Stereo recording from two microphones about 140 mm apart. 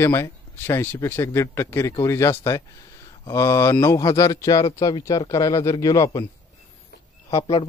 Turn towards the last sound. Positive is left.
turn(degrees=40)  # may be behind; listen again after turning